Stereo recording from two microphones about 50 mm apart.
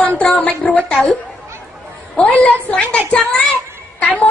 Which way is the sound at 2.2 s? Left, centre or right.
Left.